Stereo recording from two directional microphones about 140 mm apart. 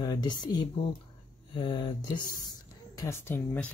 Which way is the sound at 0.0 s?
30° left (ahead or behind).